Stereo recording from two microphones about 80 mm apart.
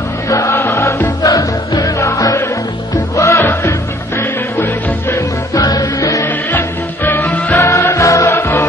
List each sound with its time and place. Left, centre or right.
0.3 s music: left
5.5 s music: left
6.2 s music: left
7.5 s music: left